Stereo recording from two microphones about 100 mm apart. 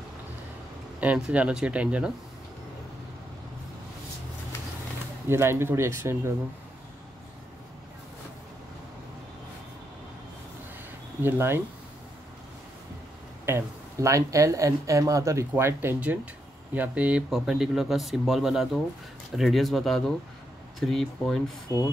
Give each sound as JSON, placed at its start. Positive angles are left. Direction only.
{"t": 1.0, "sound": "speech", "side_deg": -15}
{"t": 5.3, "sound": "speech", "side_deg": -25}
{"t": 11.2, "sound": "speech", "side_deg": -25}
{"t": 13.5, "sound": "speech", "side_deg": -30}